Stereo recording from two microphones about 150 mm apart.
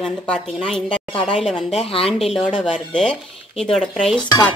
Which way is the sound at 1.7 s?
40° left (ahead or behind).